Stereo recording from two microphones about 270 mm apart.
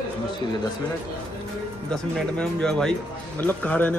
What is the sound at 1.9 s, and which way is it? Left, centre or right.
Speech, centre.